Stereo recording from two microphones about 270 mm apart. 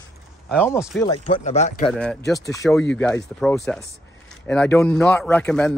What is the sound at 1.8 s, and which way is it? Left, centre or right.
A man's voice, centre.